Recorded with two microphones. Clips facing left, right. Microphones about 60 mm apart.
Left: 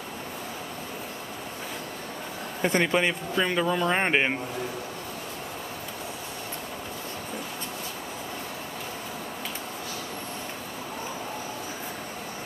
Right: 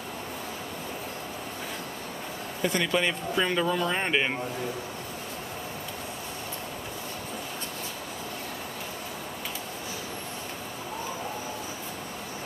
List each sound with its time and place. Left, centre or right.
2.6 s speech: left
3.3 s speech: centre
3.9 s speech: left